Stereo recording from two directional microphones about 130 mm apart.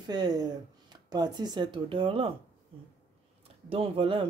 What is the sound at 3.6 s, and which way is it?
Speech, 45° right (ahead or behind).